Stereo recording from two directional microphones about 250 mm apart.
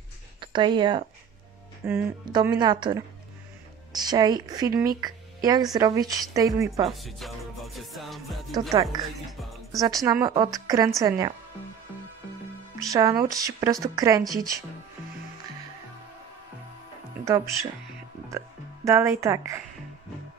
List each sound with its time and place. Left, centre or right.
0.4 s speech: centre
6.9 s music: centre
8.9 s speech: centre
9.4 s music: centre
9.8 s speech: centre
13.2 s speech: centre
17.2 s speech: centre
18.9 s speech: centre